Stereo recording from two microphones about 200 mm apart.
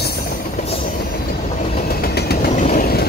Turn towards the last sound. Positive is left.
turn(degrees=50)  # may be behind; listen again after turning